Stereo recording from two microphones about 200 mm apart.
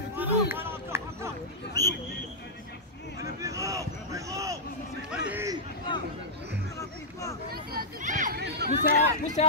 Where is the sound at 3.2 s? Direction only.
15° right (ahead or behind).